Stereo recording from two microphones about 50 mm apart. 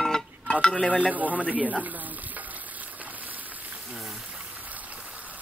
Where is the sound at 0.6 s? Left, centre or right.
Centre.